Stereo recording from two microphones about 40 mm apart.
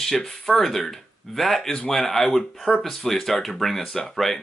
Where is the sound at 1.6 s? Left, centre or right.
Left.